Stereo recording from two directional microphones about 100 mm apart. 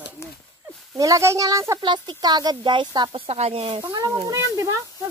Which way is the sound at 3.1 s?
80° right.